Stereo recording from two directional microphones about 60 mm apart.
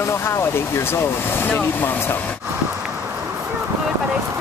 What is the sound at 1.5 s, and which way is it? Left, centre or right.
Speech, left.